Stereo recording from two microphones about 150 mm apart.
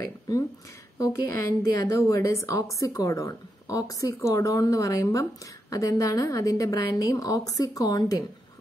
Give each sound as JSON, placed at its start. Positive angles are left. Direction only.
{"t": 1.2, "sound": "a woman's voice", "side_deg": 20}